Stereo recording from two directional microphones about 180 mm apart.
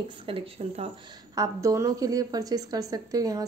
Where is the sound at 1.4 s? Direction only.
20° right (ahead or behind).